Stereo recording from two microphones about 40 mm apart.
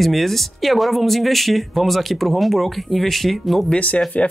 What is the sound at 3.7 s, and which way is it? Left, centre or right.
Speech, left.